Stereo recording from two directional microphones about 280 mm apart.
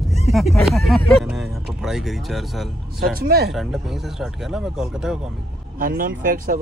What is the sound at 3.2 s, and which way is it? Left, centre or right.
Speech, right.